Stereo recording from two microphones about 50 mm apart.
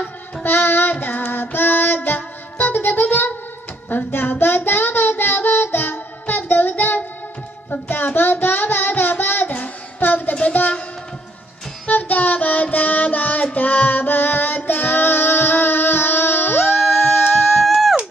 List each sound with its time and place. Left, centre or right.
0.4 s child singing: left
10.3 s music: left
11.9 s child singing: left
16.7 s a sound: left
17.5 s music: centre